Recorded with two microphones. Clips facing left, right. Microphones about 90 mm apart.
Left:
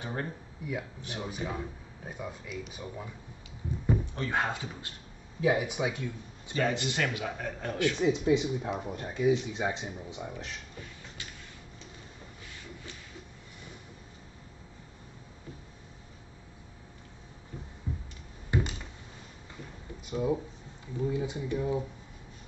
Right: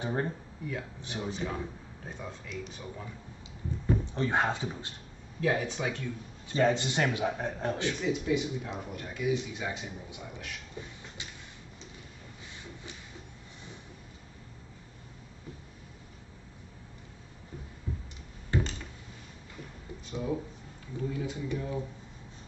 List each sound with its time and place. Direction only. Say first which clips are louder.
0.0 s speech: right 4 dB; 25° right (ahead or behind)
0.6 s speech: left 1 dB; 10° left (ahead or behind)
4.0 s speech: right 2 dB; 25° right (ahead or behind)
5.4 s speech: left 2 dB; 10° left (ahead or behind)
6.5 s a man's voice: right 3 dB; 25° right (ahead or behind)
8.0 s a man's voice: left 5 dB; 30° left (ahead or behind)
11.2 s a sound: even; 20° right (ahead or behind)
17.9 s a sound: left 1 dB; 20° left (ahead or behind)
18.5 s finger snapping: even; 15° left (ahead or behind)
20.1 s speech: left 4 dB; 15° left (ahead or behind)